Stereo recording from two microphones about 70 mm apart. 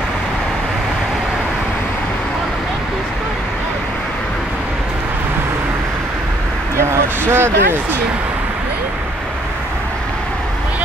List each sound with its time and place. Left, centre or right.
6.9 s speech: right